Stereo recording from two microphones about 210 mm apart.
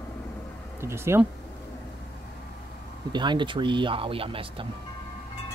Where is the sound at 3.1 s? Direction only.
20° right (ahead or behind).